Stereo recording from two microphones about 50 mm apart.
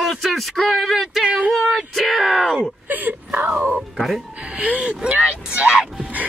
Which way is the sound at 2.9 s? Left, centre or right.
Right.